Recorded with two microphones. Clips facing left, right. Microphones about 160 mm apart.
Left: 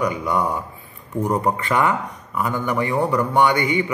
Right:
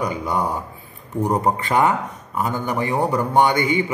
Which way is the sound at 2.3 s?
35° right (ahead or behind).